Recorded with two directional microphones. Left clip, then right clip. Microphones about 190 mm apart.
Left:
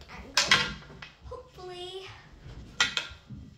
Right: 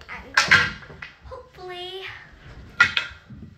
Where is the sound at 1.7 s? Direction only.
20° left (ahead or behind).